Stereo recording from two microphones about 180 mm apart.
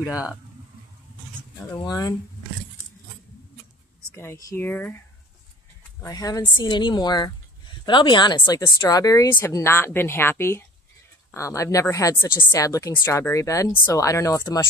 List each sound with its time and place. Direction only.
1.8 s speech: 20° left (ahead or behind)
4.1 s speech: 15° left (ahead or behind)